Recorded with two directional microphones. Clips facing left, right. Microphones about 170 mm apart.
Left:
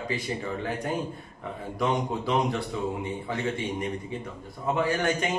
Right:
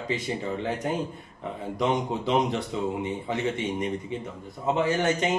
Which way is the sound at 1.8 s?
20° right (ahead or behind).